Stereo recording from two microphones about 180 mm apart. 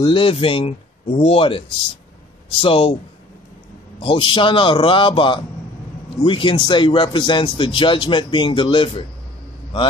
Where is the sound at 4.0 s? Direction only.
30° left (ahead or behind).